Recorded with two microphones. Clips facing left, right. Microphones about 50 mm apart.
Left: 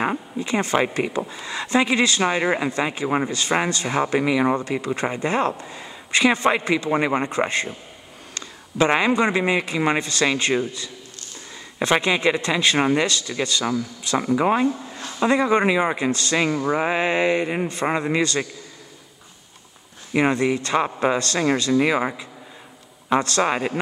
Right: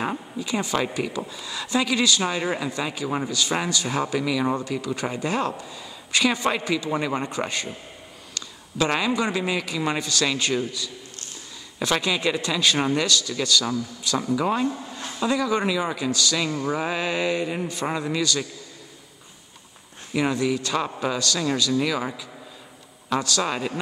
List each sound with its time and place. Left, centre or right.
0.0 s a man's voice: left
20.1 s speech: left